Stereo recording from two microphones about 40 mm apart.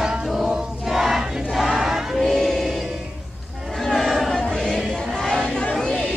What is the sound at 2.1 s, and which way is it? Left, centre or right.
Choir, centre.